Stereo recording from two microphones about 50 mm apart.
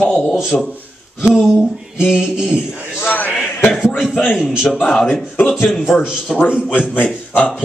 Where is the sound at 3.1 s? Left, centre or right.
Left.